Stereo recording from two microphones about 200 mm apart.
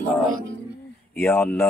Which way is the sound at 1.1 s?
10° left (ahead or behind).